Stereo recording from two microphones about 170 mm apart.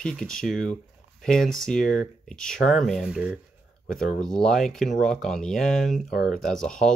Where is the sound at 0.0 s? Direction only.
Centre (ahead or behind).